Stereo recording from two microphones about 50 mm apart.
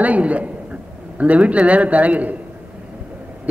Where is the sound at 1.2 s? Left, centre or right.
Right.